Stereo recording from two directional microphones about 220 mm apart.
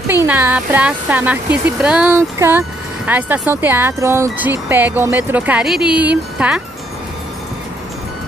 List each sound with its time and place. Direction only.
0.1 s speech: 10° right (ahead or behind)